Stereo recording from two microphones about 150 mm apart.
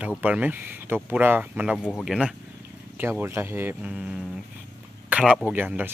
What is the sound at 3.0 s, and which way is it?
Speech, 15° right (ahead or behind).